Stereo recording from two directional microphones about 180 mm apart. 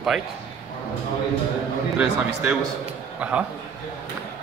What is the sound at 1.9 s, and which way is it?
Speech, 5° right (ahead or behind).